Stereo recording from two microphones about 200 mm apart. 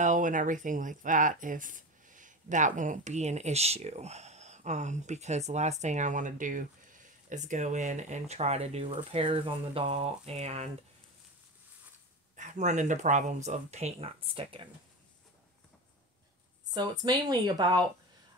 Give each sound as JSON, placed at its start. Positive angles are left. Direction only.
{"t": 0.0, "sound": "speech", "side_deg": -40}
{"t": 12.4, "sound": "speech", "side_deg": -35}
{"t": 16.7, "sound": "speech", "side_deg": -20}